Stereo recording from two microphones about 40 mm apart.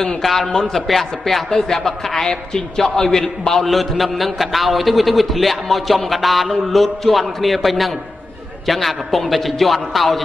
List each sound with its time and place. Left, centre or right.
0.2 s a man's voice: centre
0.5 s a man's voice: centre
0.8 s a man's voice: centre
3.6 s a man's voice: centre